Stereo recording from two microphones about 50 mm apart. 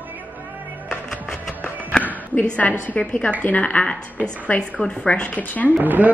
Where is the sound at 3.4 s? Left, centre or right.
Left.